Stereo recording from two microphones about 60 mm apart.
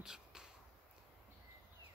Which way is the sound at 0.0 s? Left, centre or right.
Centre.